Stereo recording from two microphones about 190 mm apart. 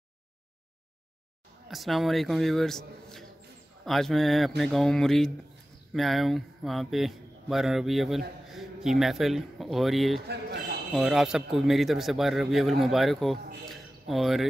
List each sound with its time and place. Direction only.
1.7 s a man's voice: centre (ahead or behind)
10.2 s a man's voice: 60° right (ahead or behind)
10.9 s a man's voice: centre (ahead or behind)